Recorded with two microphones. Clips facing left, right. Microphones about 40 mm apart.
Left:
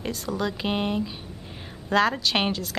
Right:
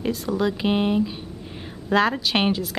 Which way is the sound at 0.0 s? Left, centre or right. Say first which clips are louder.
Right 5 dB; centre.